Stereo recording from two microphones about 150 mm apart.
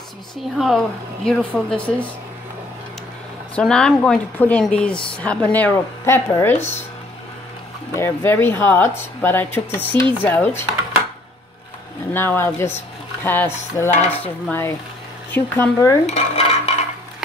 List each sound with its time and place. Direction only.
0.6 s speech: centre (ahead or behind)
3.5 s speech: 5° left (ahead or behind)
7.9 s speech: 15° left (ahead or behind)
12.1 s speech: 15° left (ahead or behind)
16.1 s dishes: 45° left (ahead or behind)